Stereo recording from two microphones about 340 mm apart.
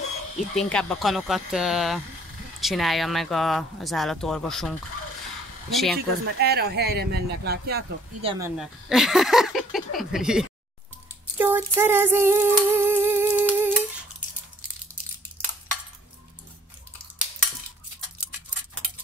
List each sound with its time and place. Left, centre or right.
0.6 s speech: centre
5.9 s speech: right
8.2 s speech: centre
8.5 s speech: centre
11.3 s a sound: centre